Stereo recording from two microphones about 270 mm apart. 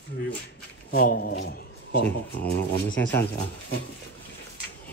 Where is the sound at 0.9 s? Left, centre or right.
Left.